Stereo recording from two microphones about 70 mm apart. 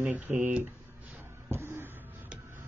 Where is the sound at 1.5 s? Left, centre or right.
Right.